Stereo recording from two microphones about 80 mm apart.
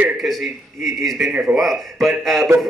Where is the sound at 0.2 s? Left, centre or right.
Centre.